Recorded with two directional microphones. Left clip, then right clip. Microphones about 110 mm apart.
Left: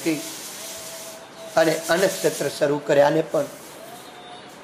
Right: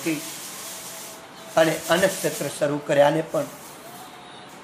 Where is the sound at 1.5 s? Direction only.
5° left (ahead or behind).